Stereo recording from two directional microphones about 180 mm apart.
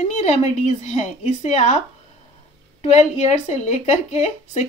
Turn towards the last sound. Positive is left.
turn(degrees=35)  # may be behind; listen again after turning